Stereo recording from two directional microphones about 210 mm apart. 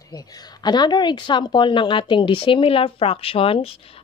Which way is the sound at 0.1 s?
20° left (ahead or behind).